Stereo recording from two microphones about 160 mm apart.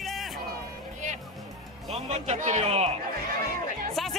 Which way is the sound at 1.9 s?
40° right (ahead or behind).